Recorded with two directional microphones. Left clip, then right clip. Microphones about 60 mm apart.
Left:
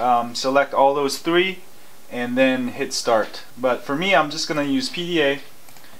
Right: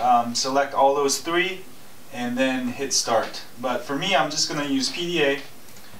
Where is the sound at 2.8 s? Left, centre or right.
Right.